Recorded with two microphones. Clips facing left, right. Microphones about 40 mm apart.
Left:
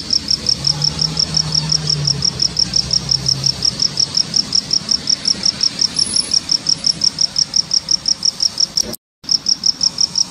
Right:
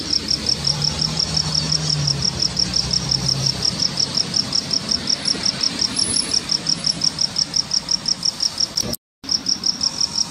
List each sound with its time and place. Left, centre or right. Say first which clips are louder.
0.1 s insect: left 5 dB; centre